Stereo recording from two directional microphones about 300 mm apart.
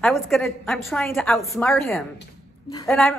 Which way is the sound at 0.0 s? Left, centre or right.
Centre.